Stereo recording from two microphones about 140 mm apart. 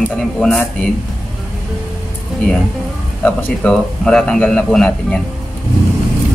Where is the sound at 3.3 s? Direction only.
10° left (ahead or behind).